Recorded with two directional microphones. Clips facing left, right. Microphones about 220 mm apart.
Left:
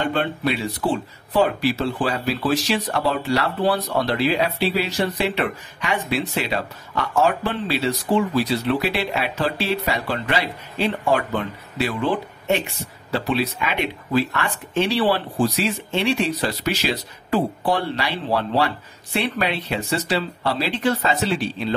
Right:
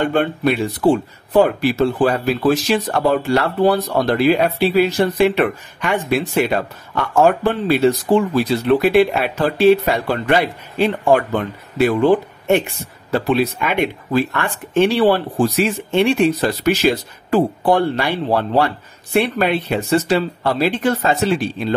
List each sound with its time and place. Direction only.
0.0 s speech: 50° right (ahead or behind)